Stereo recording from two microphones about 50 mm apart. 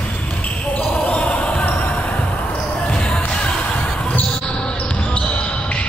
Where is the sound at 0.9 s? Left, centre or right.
Left.